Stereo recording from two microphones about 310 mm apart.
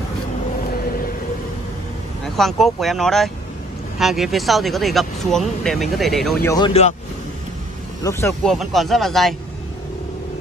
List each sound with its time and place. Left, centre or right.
2.2 s speech: centre
6.5 s speech: centre
8.0 s speech: centre